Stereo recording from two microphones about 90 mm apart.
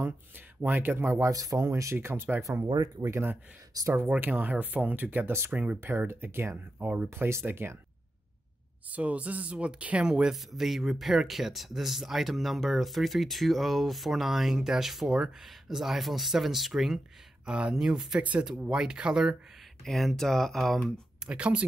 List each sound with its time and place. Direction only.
0.6 s speech: 20° right (ahead or behind)
2.4 s speech: 35° right (ahead or behind)
3.8 s speech: 40° right (ahead or behind)
4.1 s speech: 15° right (ahead or behind)
8.9 s speech: 15° right (ahead or behind)
19.8 s speech: 5° left (ahead or behind)
21.3 s speech: 10° right (ahead or behind)